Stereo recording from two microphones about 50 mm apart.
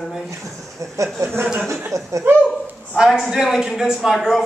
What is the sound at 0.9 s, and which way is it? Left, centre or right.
Speech, right.